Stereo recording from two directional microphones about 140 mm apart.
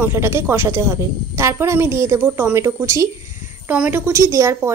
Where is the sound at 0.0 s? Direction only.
15° right (ahead or behind).